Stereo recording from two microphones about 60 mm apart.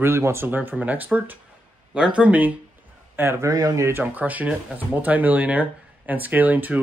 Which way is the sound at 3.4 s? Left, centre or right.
Right.